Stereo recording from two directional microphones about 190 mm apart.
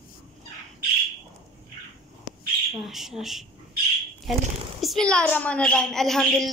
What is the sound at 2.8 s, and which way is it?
A woman's voice, centre (ahead or behind).